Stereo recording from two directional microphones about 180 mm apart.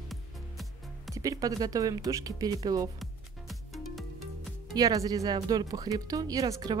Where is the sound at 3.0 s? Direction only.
Centre (ahead or behind).